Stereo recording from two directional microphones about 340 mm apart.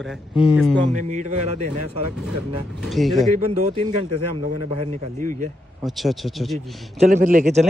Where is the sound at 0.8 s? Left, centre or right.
Right.